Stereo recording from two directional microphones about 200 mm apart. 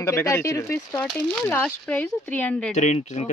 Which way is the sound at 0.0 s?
15° left (ahead or behind).